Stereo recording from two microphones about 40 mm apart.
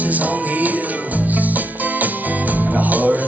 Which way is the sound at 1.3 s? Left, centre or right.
Right.